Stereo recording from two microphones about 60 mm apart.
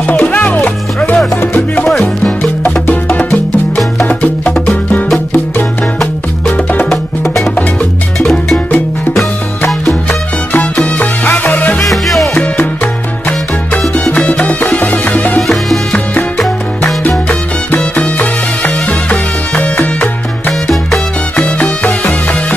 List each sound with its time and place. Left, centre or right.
0.0 s music: left
1.9 s music: centre
2.6 s music: left
6.5 s music: left
8.2 s music: centre
10.5 s music: left
11.8 s music: centre
14.0 s music: left
17.3 s music: left